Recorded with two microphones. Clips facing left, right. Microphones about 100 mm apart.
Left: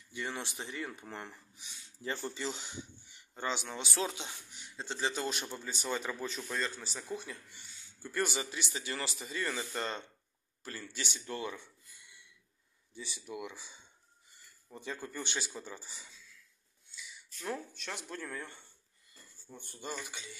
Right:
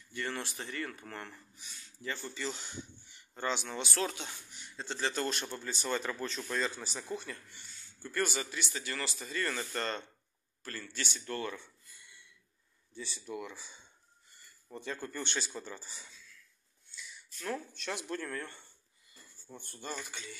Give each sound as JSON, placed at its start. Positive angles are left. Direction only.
{"t": 0.1, "sound": "speech", "side_deg": 10}
{"t": 2.0, "sound": "speech", "side_deg": 30}
{"t": 2.4, "sound": "speech", "side_deg": 15}
{"t": 8.0, "sound": "speech", "side_deg": 15}
{"t": 17.7, "sound": "speech", "side_deg": 0}